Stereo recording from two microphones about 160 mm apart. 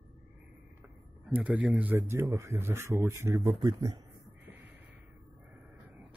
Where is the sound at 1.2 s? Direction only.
5° right (ahead or behind); by 4.0 s 25° right (ahead or behind).